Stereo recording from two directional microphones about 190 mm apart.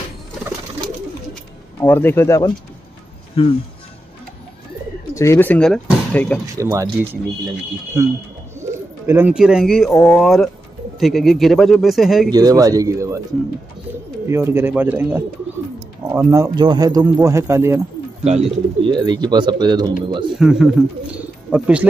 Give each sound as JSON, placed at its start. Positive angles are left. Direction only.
{"t": 1.8, "sound": "speech", "side_deg": 10}
{"t": 3.4, "sound": "speech", "side_deg": 30}
{"t": 5.1, "sound": "speech", "side_deg": 15}
{"t": 6.5, "sound": "speech", "side_deg": -15}
{"t": 12.3, "sound": "speech", "side_deg": -20}
{"t": 14.2, "sound": "speech", "side_deg": -15}
{"t": 18.2, "sound": "speech", "side_deg": -35}
{"t": 20.3, "sound": "speech", "side_deg": -5}